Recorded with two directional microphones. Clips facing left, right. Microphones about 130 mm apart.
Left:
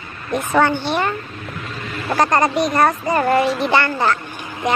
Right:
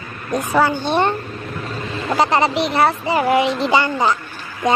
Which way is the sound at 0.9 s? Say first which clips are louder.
Right 3 dB; 25° right (ahead or behind).